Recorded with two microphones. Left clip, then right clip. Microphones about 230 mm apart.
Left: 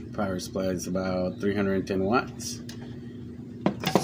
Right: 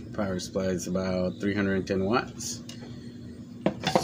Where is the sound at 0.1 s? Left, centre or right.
Centre.